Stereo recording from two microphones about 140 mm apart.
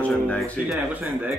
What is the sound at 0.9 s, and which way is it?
Speech, 10° right (ahead or behind).